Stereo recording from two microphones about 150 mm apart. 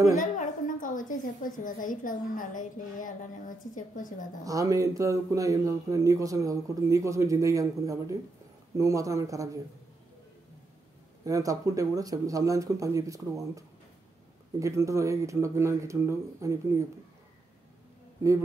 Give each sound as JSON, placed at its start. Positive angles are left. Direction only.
{"t": 0.2, "sound": "a woman's voice", "side_deg": 60}
{"t": 4.5, "sound": "speech", "side_deg": -20}
{"t": 11.2, "sound": "speech", "side_deg": -20}